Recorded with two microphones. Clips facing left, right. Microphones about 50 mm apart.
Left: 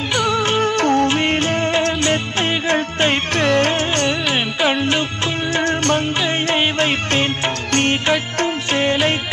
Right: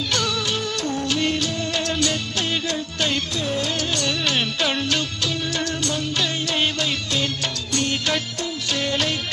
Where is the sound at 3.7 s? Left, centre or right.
Left.